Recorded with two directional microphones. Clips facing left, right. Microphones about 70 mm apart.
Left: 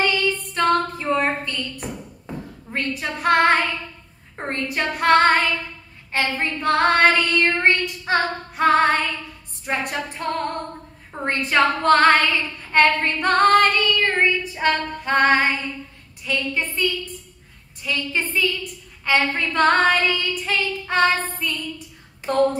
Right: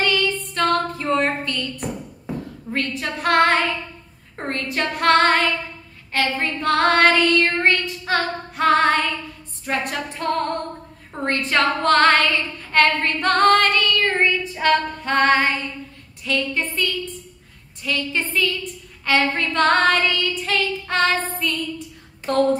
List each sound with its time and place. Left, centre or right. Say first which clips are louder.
0.6 s female singing: left 1 dB; centre
0.9 s a sound: right 1 dB; centre
2.3 s a sound: right 4 dB; centre
2.7 s child singing: right 1 dB; centre
4.4 s female singing: even; centre
4.6 s child singing: even; centre
7.5 s child singing: even; centre
12.3 s a sound: right 1 dB; centre
13.0 s female singing: even; centre
15.0 s child singing: even; centre
17.8 s a woman's voice: right 1 dB; centre
19.4 s child singing: left 1 dB; centre
22.2 s a sound: right 1 dB; centre